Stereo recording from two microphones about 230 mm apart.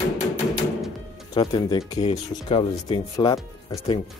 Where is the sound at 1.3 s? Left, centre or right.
Centre.